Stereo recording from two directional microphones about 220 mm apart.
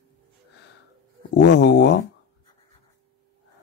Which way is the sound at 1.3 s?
50° left (ahead or behind).